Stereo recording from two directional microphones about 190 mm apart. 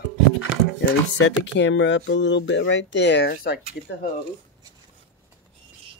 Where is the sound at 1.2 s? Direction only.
70° left (ahead or behind).